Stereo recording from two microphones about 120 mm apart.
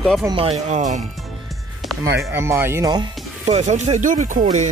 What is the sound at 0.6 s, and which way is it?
Speech, 90° right.